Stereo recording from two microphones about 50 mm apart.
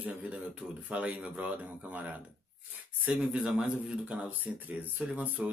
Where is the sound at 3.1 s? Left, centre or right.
Centre.